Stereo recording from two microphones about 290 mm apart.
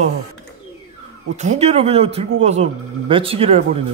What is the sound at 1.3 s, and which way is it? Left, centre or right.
Speech, right.